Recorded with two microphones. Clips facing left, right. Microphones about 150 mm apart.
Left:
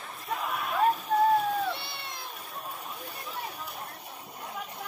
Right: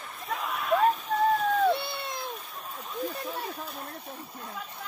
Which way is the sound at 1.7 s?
55° right (ahead or behind).